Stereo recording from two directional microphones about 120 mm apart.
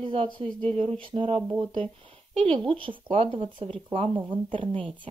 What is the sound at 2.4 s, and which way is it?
A woman's voice, 45° right (ahead or behind).